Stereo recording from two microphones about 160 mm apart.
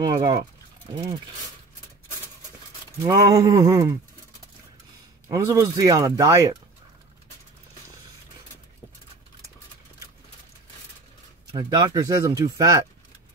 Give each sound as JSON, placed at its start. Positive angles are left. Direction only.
{"t": 0.0, "sound": "speech", "side_deg": -25}
{"t": 3.0, "sound": "speech", "side_deg": -20}
{"t": 5.3, "sound": "speech", "side_deg": -20}
{"t": 11.5, "sound": "speech", "side_deg": -25}